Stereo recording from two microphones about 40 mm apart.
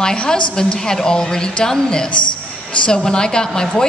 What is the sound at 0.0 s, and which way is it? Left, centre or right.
A woman's voice, centre.